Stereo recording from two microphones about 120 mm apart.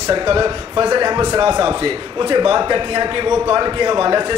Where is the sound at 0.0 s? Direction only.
30° right (ahead or behind).